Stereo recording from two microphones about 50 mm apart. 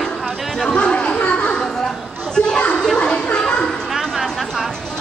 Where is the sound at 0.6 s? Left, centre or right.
Centre.